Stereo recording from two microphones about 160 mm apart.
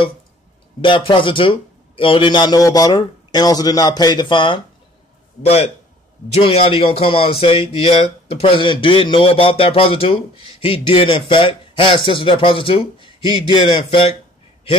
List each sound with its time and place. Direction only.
0.7 s speech: 30° left (ahead or behind)